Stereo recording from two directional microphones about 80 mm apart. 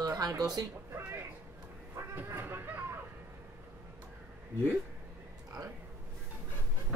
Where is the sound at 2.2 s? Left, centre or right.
Right.